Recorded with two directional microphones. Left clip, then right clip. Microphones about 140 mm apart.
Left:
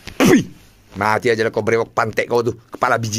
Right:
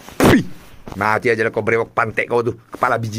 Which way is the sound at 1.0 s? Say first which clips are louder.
Even; 10° left (ahead or behind).